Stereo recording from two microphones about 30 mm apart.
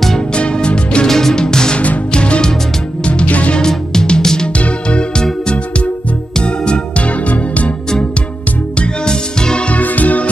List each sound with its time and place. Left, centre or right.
0.3 s music: left
1.0 s music: centre
2.1 s music: left
3.1 s music: left
3.5 s music: left
4.6 s music: left
6.4 s music: left
7.0 s music: left
8.7 s music: left
9.7 s music: left